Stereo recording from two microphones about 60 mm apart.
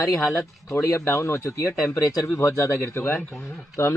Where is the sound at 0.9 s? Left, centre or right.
Left.